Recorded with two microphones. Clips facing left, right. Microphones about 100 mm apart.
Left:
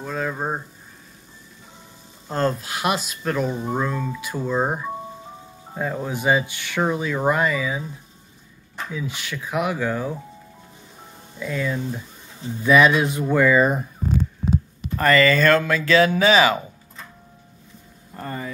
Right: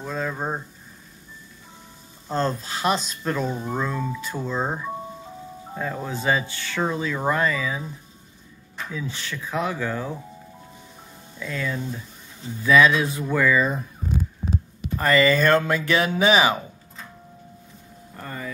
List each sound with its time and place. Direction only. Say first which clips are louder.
0.0 s speech: left 2 dB; 5° left (ahead or behind)
2.2 s speech: left 2 dB; 5° left (ahead or behind)
8.9 s speech: left 1 dB; 10° left (ahead or behind)
11.3 s speech: left 3 dB; 10° left (ahead or behind)
15.0 s speech: left 2 dB; 15° right (ahead or behind)
18.2 s speech: left 3 dB; 20° left (ahead or behind)